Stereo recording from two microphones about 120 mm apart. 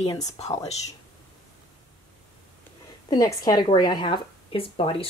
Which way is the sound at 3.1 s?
30° left (ahead or behind).